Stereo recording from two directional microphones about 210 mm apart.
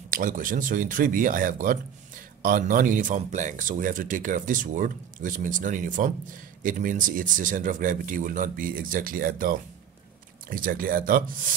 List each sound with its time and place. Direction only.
0.1 s speech: 40° right (ahead or behind)